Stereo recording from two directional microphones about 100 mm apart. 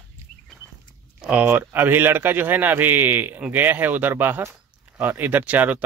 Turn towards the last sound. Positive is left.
turn(degrees=-15)  # may be behind; listen again after turning